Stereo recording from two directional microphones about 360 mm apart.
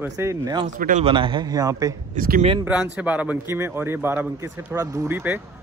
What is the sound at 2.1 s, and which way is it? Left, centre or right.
Speech, right.